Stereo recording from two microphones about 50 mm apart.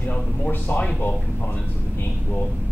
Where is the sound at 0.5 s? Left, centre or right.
Left.